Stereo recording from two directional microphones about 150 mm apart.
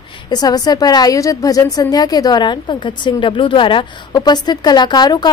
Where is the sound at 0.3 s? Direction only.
25° left (ahead or behind).